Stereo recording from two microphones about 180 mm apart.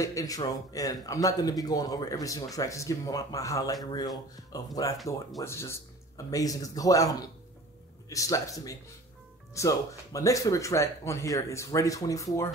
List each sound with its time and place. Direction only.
0.0 s speech: 20° left (ahead or behind)